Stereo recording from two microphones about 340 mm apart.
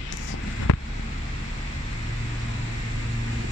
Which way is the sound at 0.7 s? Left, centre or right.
Left.